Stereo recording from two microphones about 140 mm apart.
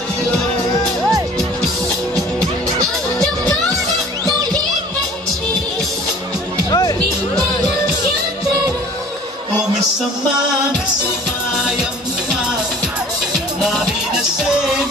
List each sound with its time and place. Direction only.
6.7 s music: 25° left (ahead or behind)
13.7 s music: 5° right (ahead or behind)